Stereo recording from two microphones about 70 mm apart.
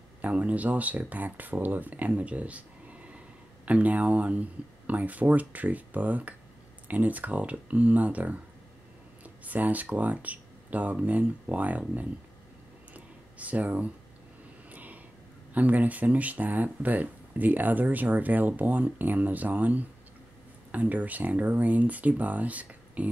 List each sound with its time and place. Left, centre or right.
0.2 s speech: right
12.9 s a sound: right
14.7 s vehicle: right
15.5 s speech: right